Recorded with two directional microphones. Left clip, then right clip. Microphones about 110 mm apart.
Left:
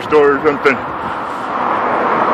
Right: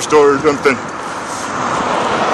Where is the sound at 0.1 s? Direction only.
40° right (ahead or behind).